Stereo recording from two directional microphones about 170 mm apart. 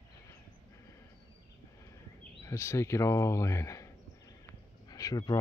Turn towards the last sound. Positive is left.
turn(degrees=20)  # may be behind; listen again after turning